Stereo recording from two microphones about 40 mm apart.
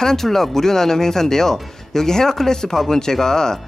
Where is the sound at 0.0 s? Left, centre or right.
Centre.